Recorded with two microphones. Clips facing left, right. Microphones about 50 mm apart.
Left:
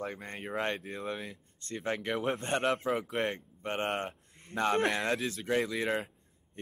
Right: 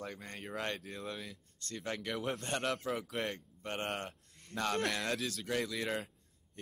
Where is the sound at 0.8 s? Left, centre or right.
Centre.